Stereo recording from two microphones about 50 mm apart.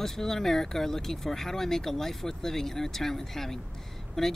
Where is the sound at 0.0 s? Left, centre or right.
Centre.